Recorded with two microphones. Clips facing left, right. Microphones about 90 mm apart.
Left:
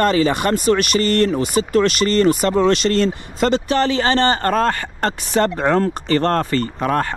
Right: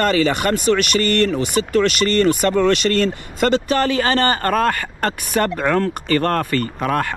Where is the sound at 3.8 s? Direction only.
25° left (ahead or behind).